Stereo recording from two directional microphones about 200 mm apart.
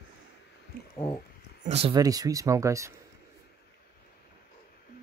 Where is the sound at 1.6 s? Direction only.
30° right (ahead or behind).